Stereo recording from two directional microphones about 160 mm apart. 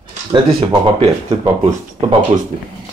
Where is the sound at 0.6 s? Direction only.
35° right (ahead or behind).